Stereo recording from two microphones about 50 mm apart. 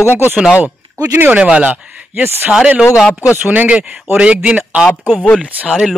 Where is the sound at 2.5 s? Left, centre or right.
Right.